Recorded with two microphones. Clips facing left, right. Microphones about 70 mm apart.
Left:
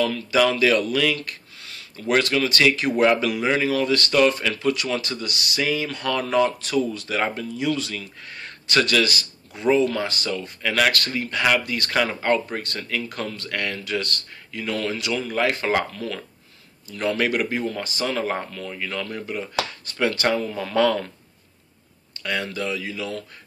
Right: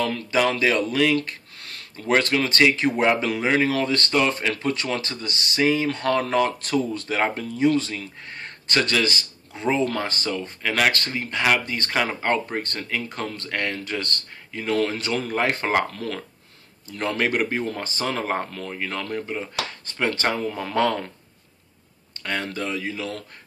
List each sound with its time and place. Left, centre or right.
0.0 s speech: right
1.6 s speech: right
22.2 s speech: right